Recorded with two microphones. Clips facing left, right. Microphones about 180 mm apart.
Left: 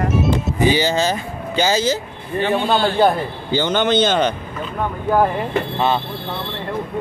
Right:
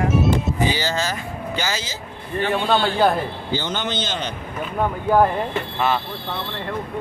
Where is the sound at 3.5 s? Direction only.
65° left (ahead or behind).